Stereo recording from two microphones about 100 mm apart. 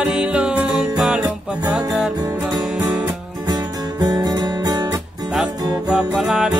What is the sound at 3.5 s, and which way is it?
Guitar, 40° right (ahead or behind).